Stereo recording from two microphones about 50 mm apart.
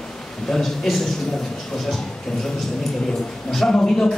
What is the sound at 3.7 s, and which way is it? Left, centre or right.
Speech, centre.